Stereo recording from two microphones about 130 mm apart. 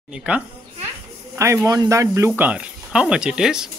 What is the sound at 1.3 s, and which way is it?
Speech, 20° right (ahead or behind).